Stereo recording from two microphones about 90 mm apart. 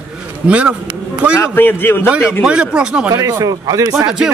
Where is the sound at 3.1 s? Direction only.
45° right (ahead or behind).